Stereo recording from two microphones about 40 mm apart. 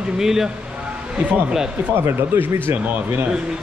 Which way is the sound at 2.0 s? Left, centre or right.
Right.